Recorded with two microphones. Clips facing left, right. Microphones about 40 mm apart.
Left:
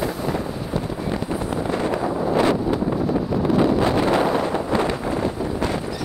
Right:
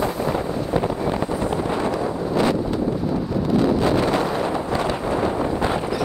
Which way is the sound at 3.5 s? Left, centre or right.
Centre.